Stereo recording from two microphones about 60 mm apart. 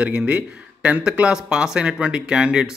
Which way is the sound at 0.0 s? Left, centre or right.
Right.